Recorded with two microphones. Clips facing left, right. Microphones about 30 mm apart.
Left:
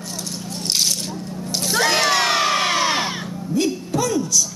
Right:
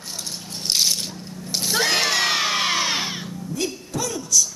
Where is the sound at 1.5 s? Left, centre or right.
Centre.